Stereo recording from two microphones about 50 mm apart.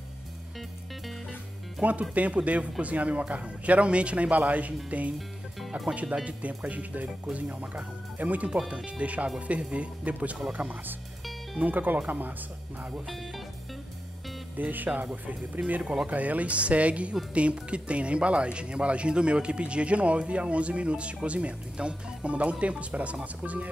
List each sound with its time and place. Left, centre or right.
1.8 s speech: right
6.2 s speech: right
13.0 s speech: centre
14.6 s speech: right
15.6 s speech: right